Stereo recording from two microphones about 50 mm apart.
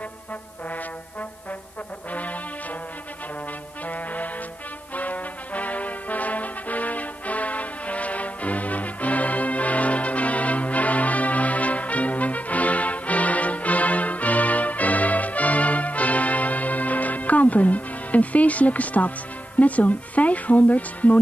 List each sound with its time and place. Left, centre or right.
3.8 s brass instrument: left
19.6 s speech: left